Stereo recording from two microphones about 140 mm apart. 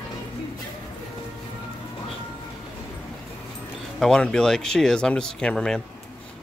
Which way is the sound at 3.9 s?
5° left (ahead or behind).